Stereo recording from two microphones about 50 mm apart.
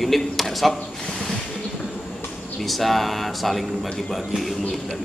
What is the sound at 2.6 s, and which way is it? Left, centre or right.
A man's voice, centre.